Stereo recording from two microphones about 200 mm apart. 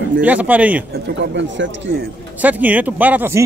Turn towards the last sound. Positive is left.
turn(degrees=-10)  # may be behind; listen again after turning